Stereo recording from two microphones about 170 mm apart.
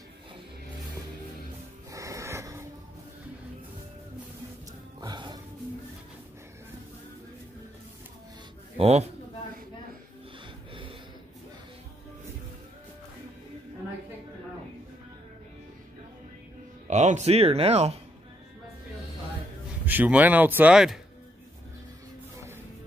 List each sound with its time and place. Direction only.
1.9 s music: 20° right (ahead or behind)
5.0 s music: 25° right (ahead or behind)
8.7 s a man's voice: 40° right (ahead or behind)
10.7 s a sound: 30° right (ahead or behind)
16.8 s speech: 45° right (ahead or behind)
19.9 s speech: 10° right (ahead or behind)